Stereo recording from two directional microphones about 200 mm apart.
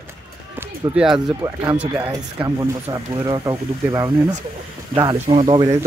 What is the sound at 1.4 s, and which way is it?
Speech, 20° right (ahead or behind).